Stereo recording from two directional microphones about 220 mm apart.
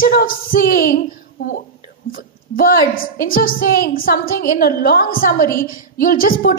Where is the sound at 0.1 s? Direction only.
40° left (ahead or behind).